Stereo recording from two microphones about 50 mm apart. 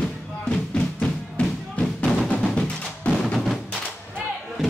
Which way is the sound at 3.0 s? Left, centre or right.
Left.